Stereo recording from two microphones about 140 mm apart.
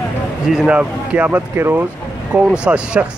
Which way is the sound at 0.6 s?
10° right (ahead or behind).